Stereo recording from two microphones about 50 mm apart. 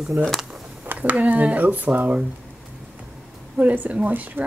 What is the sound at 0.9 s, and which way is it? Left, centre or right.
Speech, right.